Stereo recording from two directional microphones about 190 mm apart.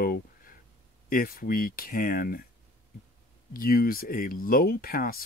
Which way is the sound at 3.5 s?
50° left (ahead or behind).